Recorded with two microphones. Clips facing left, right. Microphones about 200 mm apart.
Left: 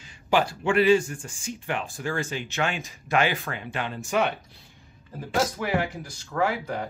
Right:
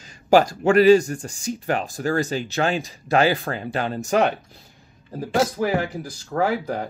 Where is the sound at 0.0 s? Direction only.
40° right (ahead or behind).